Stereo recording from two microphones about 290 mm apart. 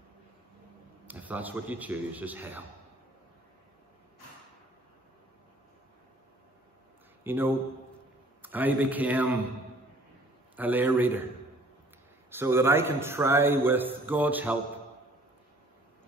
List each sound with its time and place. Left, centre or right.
1.0 s a man's voice: centre
7.2 s a man's voice: centre
10.5 s a man's voice: centre
12.3 s a man's voice: centre